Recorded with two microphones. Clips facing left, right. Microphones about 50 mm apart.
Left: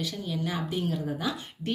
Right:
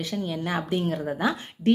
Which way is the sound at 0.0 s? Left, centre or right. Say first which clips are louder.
Right 3 dB; right.